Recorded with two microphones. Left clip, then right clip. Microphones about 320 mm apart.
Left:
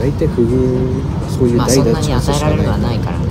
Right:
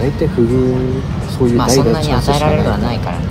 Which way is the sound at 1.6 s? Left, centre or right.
Centre.